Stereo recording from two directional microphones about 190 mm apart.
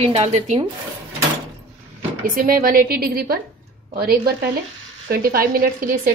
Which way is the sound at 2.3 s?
50° right (ahead or behind).